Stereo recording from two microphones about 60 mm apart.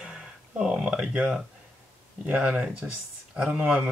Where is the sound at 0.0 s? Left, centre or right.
Centre.